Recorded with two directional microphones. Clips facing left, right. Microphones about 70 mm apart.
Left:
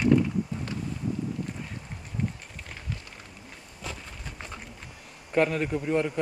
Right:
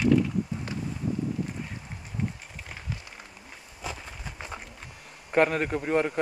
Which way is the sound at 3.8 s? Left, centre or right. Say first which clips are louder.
Right 2 dB; centre.